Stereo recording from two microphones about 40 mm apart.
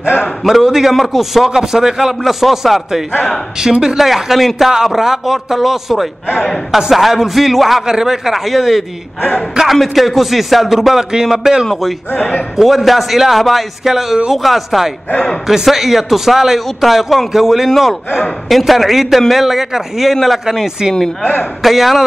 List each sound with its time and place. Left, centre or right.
0.4 s a man's voice: centre
4.0 s a man's voice: centre
12.2 s a man's voice: left
12.5 s a man's voice: centre
21.6 s a man's voice: centre